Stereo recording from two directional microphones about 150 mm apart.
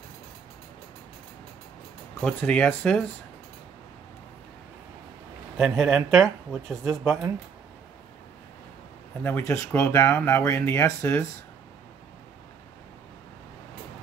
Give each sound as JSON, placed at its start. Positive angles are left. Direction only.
{"t": 2.1, "sound": "speech", "side_deg": 5}
{"t": 5.6, "sound": "speech", "side_deg": 0}
{"t": 9.2, "sound": "speech", "side_deg": 15}